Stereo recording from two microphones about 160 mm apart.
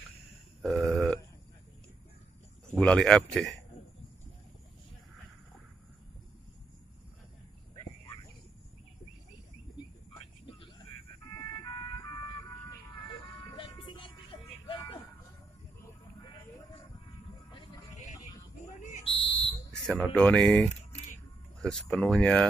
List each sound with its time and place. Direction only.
0.6 s burping: centre (ahead or behind)
2.7 s speech: 5° left (ahead or behind)
11.6 s music: 25° left (ahead or behind)
18.6 s buzzer: 50° left (ahead or behind)
19.0 s buzzer: 35° left (ahead or behind)
20.0 s speech: 5° left (ahead or behind)